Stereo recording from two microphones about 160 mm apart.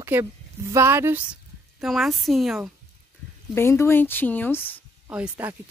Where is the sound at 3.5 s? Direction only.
15° left (ahead or behind).